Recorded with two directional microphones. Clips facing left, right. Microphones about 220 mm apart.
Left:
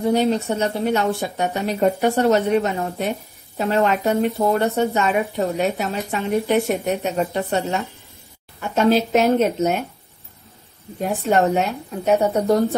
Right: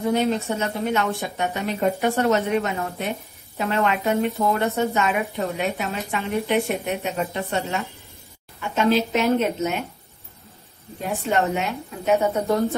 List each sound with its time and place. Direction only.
0.0 s a woman's voice: 35° left (ahead or behind)
5.7 s a woman's voice: 45° left (ahead or behind)
7.3 s a woman's voice: 30° left (ahead or behind)
8.5 s a woman's voice: 45° left (ahead or behind)
11.2 s a woman's voice: 45° left (ahead or behind)